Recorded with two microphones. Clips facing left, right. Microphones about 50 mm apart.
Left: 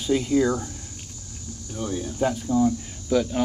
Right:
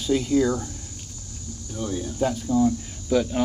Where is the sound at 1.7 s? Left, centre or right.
Left.